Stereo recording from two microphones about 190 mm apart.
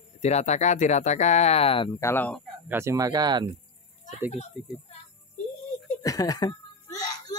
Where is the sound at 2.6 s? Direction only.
15° right (ahead or behind).